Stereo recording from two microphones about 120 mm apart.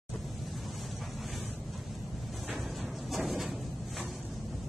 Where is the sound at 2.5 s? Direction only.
Centre (ahead or behind).